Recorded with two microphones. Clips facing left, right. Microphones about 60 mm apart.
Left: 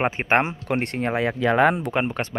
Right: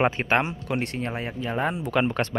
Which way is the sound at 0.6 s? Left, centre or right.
Left.